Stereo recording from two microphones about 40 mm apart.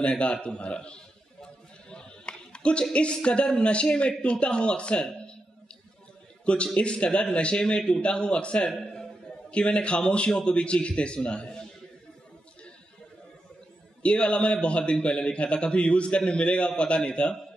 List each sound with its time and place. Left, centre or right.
0.0 s a sound: left
2.9 s a man's voice: left
6.4 s a man's voice: left
8.6 s a man's voice: centre
9.5 s a man's voice: left
14.0 s a man's voice: left